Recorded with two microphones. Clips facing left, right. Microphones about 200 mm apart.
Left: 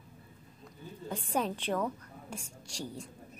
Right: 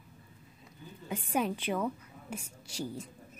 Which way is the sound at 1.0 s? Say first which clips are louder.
Right 1 dB; 10° right (ahead or behind).